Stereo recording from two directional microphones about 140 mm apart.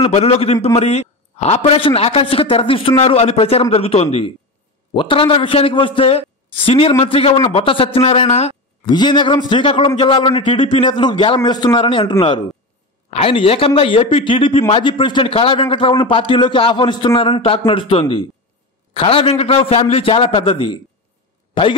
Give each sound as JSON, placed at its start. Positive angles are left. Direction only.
{"t": 0.0, "sound": "a man's voice", "side_deg": 45}
{"t": 8.8, "sound": "a man's voice", "side_deg": 30}